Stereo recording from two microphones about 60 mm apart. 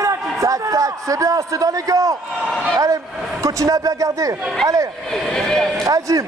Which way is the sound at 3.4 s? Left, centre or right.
Right.